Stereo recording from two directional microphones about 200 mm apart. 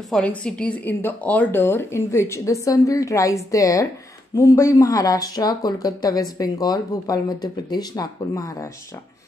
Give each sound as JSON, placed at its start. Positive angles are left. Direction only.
{"t": 0.1, "sound": "speech", "side_deg": 5}